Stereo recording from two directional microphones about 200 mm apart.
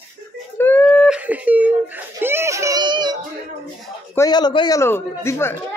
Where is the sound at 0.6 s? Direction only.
5° left (ahead or behind); by 3.2 s 20° right (ahead or behind).